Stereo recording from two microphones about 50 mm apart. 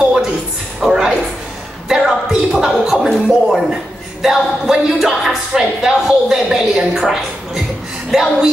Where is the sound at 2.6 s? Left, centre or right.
Centre.